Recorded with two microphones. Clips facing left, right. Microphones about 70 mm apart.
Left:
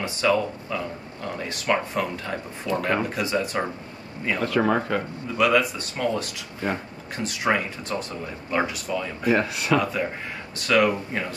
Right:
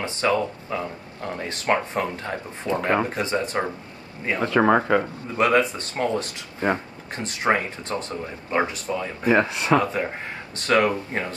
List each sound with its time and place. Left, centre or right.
0.0 s speech: right